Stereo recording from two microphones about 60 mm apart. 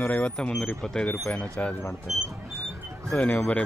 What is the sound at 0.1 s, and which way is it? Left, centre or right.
Speech, left.